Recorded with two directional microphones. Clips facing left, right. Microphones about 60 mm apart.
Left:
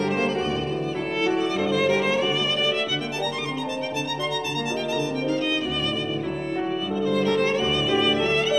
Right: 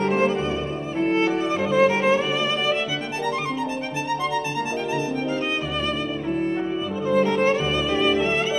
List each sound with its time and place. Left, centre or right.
1.0 s music: right
7.1 s violin: right